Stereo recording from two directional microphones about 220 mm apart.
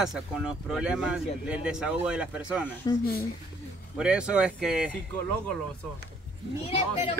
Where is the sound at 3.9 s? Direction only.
5° right (ahead or behind).